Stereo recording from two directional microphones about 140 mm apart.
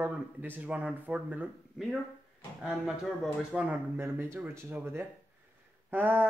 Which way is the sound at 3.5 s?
15° right (ahead or behind).